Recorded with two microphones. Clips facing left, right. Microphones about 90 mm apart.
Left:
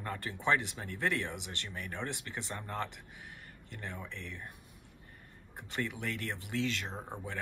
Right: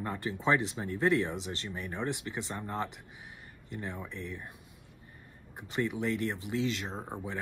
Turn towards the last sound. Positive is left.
turn(degrees=-15)  # may be behind; listen again after turning